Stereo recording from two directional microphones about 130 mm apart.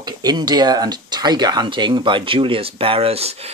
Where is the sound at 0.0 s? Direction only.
30° right (ahead or behind).